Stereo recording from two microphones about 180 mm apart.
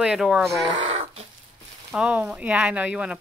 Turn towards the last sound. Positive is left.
turn(degrees=-5)  # may be behind; listen again after turning